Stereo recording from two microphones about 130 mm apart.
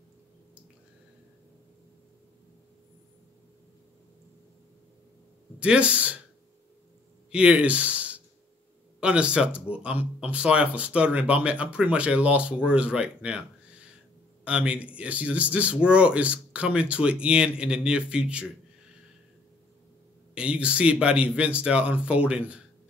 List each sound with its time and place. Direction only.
5.6 s speech: 10° right (ahead or behind)
7.2 s speech: 10° right (ahead or behind)
14.4 s speech: 10° right (ahead or behind)
20.3 s speech: 10° right (ahead or behind)